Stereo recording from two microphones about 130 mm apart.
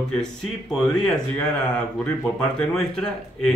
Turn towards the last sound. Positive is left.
turn(degrees=5)  # may be behind; listen again after turning